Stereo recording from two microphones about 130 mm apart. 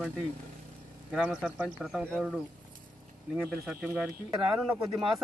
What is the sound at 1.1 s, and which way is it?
Speech, 5° right (ahead or behind).